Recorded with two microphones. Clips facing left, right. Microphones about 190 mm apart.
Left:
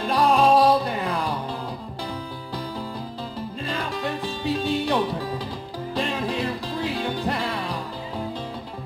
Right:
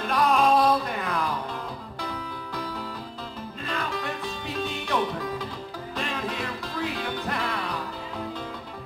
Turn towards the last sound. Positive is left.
turn(degrees=30)  # may be behind; listen again after turning